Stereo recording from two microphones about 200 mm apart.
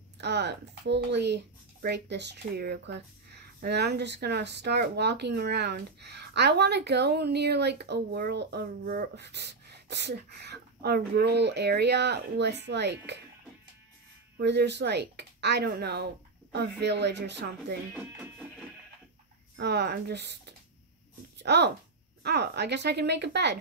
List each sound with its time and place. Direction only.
0.2 s speech: 55° right (ahead or behind)
14.3 s speech: 60° right (ahead or behind)
17.9 s speech: 10° right (ahead or behind)
19.5 s speech: 55° right (ahead or behind)